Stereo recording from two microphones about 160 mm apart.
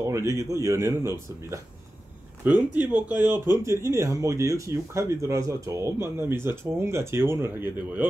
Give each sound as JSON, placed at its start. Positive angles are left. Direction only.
{"t": 0.0, "sound": "speech", "side_deg": -20}
{"t": 2.9, "sound": "speech", "side_deg": -10}